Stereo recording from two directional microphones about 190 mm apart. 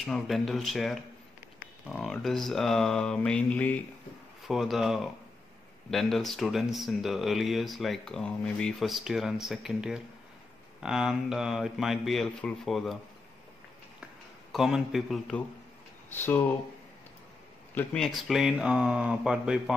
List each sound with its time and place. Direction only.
0.0 s speech: centre (ahead or behind)
14.5 s speech: centre (ahead or behind)
17.7 s speech: 5° left (ahead or behind)